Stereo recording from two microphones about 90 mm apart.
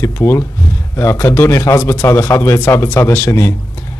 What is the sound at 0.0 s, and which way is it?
A man's voice, 30° left (ahead or behind).